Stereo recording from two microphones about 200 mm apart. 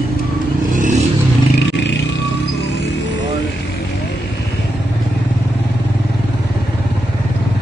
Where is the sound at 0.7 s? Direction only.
40° right (ahead or behind).